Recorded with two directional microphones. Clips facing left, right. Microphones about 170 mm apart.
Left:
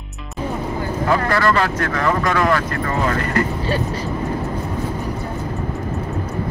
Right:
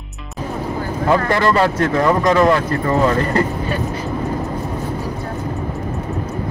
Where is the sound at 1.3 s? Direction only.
25° right (ahead or behind).